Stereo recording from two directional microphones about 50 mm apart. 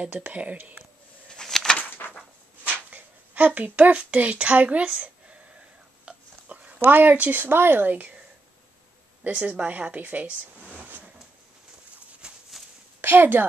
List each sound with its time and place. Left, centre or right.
0.3 s speech: right
1.3 s a sound: centre
1.8 s bird: left
2.9 s speech: right
6.0 s a sound: right
6.9 s speech: right
9.2 s speech: right
12.2 s a sound: centre
13.0 s a woman's voice: right